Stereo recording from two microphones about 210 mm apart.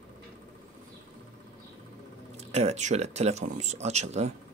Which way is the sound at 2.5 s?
30° right (ahead or behind).